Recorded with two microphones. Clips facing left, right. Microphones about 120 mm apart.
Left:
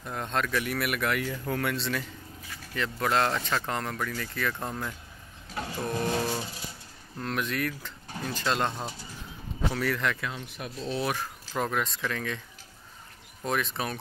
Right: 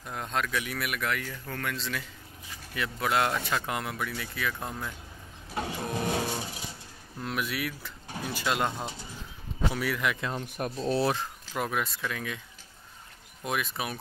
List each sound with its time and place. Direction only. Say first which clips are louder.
0.0 s speech: left 2 dB; centre (ahead or behind)
2.5 s speech: left 2 dB; 10° right (ahead or behind)
5.5 s printer: right 2 dB; 15° right (ahead or behind)
5.9 s a sound: left 3 dB; 10° right (ahead or behind)
7.2 s speech: left 2 dB; 5° right (ahead or behind)
10.3 s speech: right 5 dB; 45° right (ahead or behind)
11.5 s speech: left 2 dB; 5° right (ahead or behind)
13.4 s speech: left 2 dB; 5° right (ahead or behind)